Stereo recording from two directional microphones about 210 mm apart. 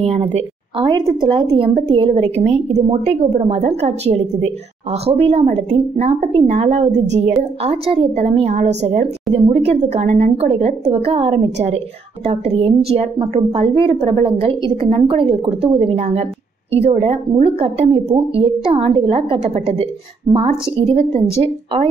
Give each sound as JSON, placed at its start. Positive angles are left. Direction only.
{"t": 0.0, "sound": "a woman's voice", "side_deg": -30}